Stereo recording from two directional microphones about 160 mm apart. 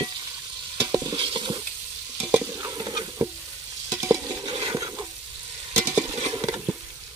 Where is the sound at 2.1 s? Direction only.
15° right (ahead or behind).